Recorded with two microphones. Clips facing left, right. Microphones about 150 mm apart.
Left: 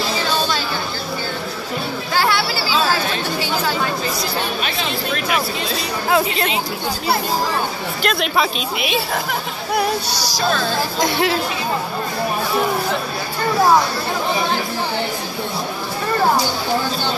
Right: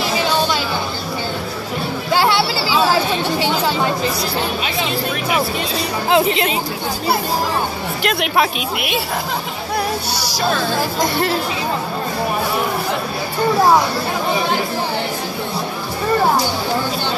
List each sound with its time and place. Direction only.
2.1 s chatter: 25° right (ahead or behind)
4.6 s speech: 15° right (ahead or behind)
8.0 s speech: 15° right (ahead or behind)
11.0 s speech: centre (ahead or behind)